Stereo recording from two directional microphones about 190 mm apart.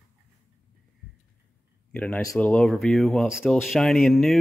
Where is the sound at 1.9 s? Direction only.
5° left (ahead or behind).